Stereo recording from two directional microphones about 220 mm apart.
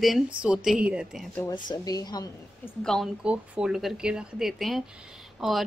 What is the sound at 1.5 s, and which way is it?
Speech, 15° left (ahead or behind).